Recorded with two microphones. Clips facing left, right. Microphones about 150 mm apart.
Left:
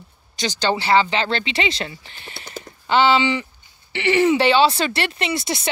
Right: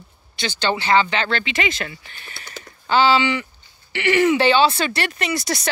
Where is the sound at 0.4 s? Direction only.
35° left (ahead or behind).